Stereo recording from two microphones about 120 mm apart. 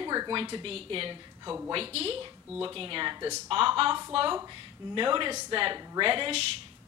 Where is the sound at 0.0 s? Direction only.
35° right (ahead or behind).